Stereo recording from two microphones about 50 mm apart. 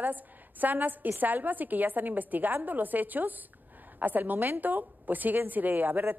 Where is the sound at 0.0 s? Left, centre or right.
Right.